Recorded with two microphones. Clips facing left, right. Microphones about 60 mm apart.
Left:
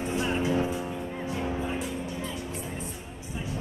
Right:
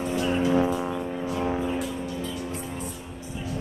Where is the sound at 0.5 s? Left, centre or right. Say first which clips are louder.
Right 5 dB; right.